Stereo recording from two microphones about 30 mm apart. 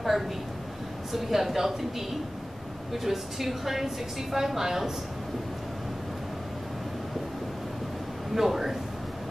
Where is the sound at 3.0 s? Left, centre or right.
Centre.